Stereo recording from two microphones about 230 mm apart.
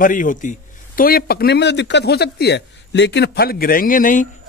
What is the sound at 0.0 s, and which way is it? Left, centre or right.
Speech, left.